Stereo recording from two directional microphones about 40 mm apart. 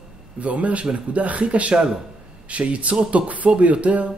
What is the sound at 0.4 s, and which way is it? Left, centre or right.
Speech, right.